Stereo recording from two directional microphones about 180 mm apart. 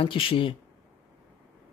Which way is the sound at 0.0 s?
30° left (ahead or behind).